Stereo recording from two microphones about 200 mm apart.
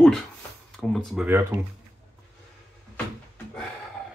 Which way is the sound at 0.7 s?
Centre (ahead or behind).